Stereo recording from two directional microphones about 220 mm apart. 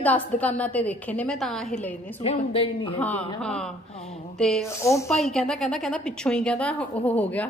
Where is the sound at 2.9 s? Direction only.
5° left (ahead or behind).